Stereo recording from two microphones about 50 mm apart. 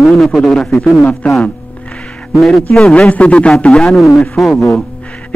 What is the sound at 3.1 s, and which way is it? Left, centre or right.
Speech, left.